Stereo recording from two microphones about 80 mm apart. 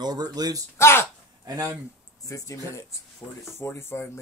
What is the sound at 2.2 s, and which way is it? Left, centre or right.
Speech, left.